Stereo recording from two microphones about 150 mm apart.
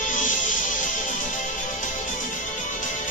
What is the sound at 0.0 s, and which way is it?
Music, 60° left (ahead or behind).